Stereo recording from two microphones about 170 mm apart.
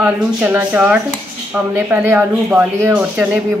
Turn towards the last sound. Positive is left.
turn(degrees=-5)  # may be behind; listen again after turning